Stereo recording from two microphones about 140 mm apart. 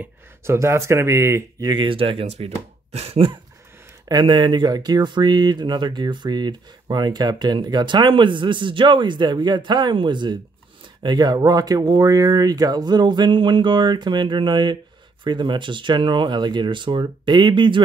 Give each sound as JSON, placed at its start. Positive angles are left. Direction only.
{"t": 0.0, "sound": "speech", "side_deg": -20}